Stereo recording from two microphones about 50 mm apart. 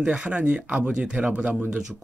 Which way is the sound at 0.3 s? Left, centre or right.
Right.